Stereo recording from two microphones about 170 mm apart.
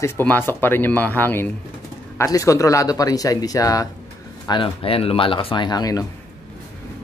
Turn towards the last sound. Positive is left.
turn(degrees=20)  # may be behind; listen again after turning